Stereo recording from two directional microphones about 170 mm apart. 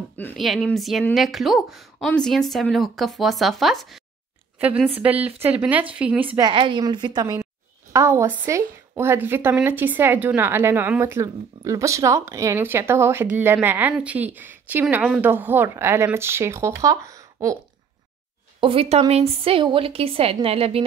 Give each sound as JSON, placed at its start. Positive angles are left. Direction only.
{"t": 0.4, "sound": "a woman's voice", "side_deg": 0}
{"t": 6.4, "sound": "a woman's voice", "side_deg": -30}
{"t": 18.6, "sound": "a woman's voice", "side_deg": -35}